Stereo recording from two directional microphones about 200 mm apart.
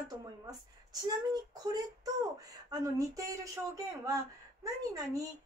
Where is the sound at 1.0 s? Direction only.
20° right (ahead or behind).